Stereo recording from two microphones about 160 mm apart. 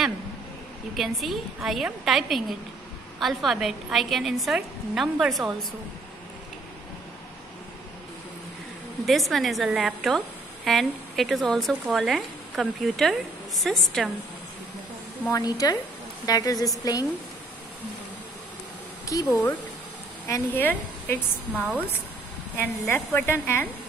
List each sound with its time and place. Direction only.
0.9 s a woman's voice: centre (ahead or behind)
9.0 s a woman's voice: centre (ahead or behind)
15.2 s a woman's voice: 20° left (ahead or behind)
19.1 s a woman's voice: 20° left (ahead or behind)